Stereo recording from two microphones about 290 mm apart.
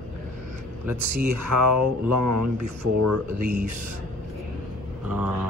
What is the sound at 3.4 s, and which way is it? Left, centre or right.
Speech, right.